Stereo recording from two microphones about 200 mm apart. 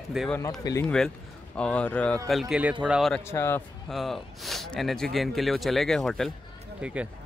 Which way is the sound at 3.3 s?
10° left (ahead or behind).